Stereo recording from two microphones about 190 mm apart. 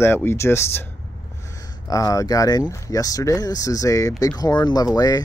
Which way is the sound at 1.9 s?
15° left (ahead or behind).